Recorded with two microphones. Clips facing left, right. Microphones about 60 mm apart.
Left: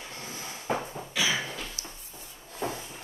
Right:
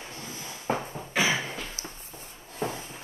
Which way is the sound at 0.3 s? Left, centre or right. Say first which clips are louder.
Even; left.